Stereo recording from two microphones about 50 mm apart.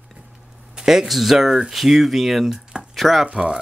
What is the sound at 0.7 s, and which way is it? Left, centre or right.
Speech, centre.